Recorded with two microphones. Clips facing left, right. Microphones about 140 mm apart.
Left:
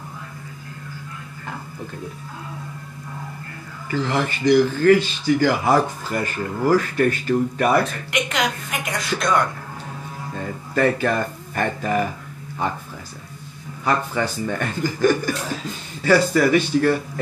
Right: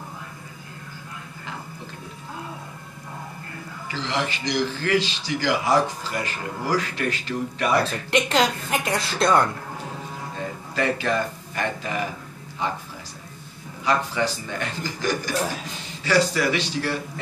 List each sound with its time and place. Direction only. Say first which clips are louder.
3.9 s a man's voice: left 5 dB; 50° left (ahead or behind)
8.1 s a woman's voice: right 7 dB; 30° right (ahead or behind)
10.7 s a man's voice: left 5 dB; 50° left (ahead or behind)
13.8 s a man's voice: left 1 dB; 50° left (ahead or behind)